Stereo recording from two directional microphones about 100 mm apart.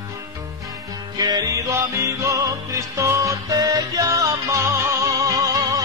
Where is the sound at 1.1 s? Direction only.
40° right (ahead or behind).